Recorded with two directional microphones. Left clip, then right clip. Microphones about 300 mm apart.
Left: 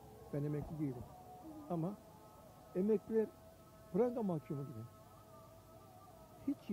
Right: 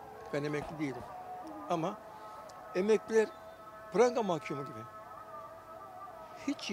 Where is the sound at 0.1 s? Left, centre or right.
Centre.